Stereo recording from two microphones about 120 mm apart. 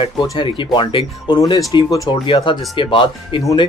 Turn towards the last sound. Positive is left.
turn(degrees=45)  # may be behind; listen again after turning